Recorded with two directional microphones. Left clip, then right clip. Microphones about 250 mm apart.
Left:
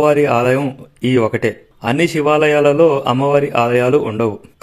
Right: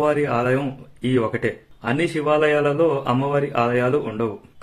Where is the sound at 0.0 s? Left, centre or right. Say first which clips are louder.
Left 7 dB; left.